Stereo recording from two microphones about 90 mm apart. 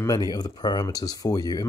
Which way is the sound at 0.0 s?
45° left (ahead or behind).